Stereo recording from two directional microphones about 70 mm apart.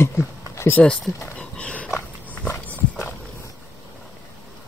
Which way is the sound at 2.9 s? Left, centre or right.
Left.